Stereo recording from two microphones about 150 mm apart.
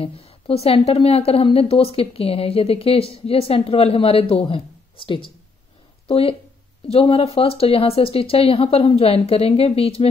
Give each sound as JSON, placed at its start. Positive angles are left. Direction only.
{"t": 0.0, "sound": "a woman's voice", "side_deg": 40}